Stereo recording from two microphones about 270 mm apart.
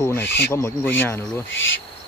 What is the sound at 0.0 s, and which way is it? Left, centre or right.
Speech, centre.